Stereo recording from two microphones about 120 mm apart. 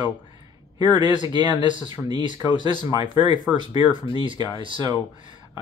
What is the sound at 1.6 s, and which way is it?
Speech, 40° right (ahead or behind).